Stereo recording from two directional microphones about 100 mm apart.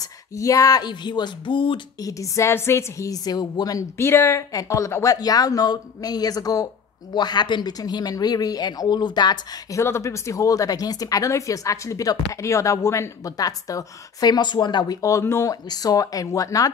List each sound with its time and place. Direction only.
0.4 s speech: 35° left (ahead or behind); by 1.8 s 55° left (ahead or behind)
2.0 s speech: 35° left (ahead or behind)
3.1 s speech: 40° left (ahead or behind)
9.8 s speech: 25° left (ahead or behind); by 15.0 s 45° left (ahead or behind)
15.0 s speech: 30° left (ahead or behind)